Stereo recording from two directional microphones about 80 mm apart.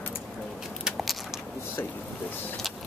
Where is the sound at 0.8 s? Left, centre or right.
Centre.